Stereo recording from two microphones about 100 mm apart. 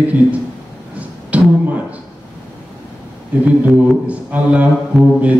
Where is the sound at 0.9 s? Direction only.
15° right (ahead or behind).